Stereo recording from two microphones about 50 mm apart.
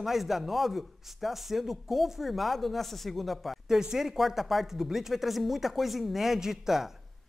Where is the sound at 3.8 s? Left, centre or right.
Centre.